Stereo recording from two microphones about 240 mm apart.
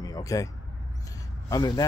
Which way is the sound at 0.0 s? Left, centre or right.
Centre.